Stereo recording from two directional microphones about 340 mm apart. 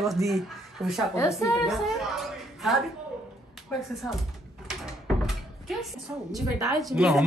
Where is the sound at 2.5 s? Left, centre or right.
Centre.